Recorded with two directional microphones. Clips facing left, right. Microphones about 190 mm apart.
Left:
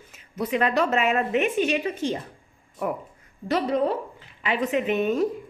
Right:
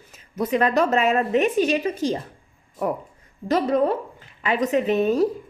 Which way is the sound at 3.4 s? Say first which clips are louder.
Right 3 dB; 45° right (ahead or behind).